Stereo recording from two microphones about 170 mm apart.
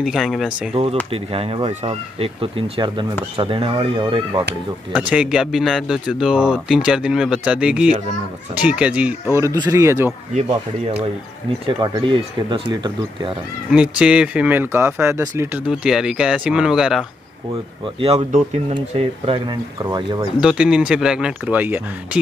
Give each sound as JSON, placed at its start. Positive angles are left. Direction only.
{"t": 0.0, "sound": "speech", "side_deg": 0}
{"t": 1.1, "sound": "speech", "side_deg": -35}
{"t": 4.9, "sound": "speech", "side_deg": -5}
{"t": 9.4, "sound": "speech", "side_deg": -20}
{"t": 11.8, "sound": "speech", "side_deg": -30}
{"t": 13.7, "sound": "speech", "side_deg": -5}
{"t": 17.8, "sound": "speech", "side_deg": -35}
{"t": 20.3, "sound": "speech", "side_deg": -5}